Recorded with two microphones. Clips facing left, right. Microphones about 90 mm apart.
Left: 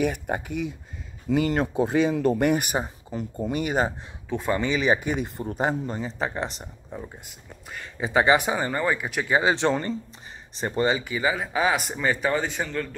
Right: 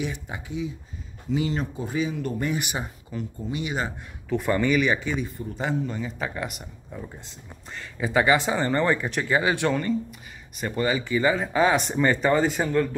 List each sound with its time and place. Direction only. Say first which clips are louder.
0.0 s speech: left 6 dB; 55° left (ahead or behind); by 2.5 s 90° left
2.5 s speech: left 5 dB; 45° left (ahead or behind)
3.3 s speech: left 5 dB; 55° left (ahead or behind)
4.3 s speech: right 2 dB; 20° left (ahead or behind)
5.2 s speech: left 4 dB; 50° left (ahead or behind); by 6.7 s 30° left (ahead or behind)
7.7 s speech: even; 20° left (ahead or behind)
9.3 s speech: left 2 dB; 20° left (ahead or behind); by 12.6 s 5° right (ahead or behind)